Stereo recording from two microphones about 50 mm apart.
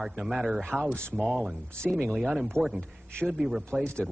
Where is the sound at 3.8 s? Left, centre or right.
Centre.